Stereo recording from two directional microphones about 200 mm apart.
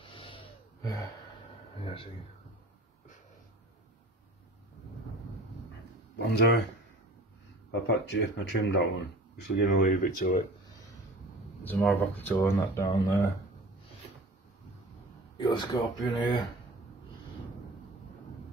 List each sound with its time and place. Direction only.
0.0 s gasp: 25° left (ahead or behind)
6.1 s speech: 55° left (ahead or behind)
7.7 s speech: 65° left (ahead or behind); by 10.4 s 45° left (ahead or behind)
11.6 s speech: 10° left (ahead or behind)
15.3 s speech: 20° left (ahead or behind)